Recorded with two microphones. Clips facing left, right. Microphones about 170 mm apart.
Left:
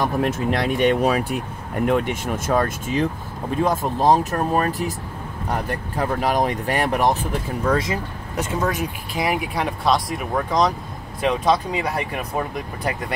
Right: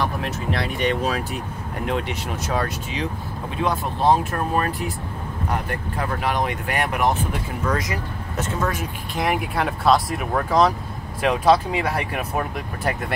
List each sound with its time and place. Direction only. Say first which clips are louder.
0.0 s speech: left 4 dB; 50° left (ahead or behind)
5.9 s speech: left 4 dB; 40° left (ahead or behind)
8.4 s speech: left 2 dB; 15° left (ahead or behind)
9.1 s speech: right 1 dB; centre (ahead or behind)